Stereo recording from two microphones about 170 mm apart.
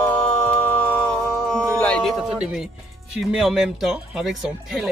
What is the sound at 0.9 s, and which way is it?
Music, 5° left (ahead or behind).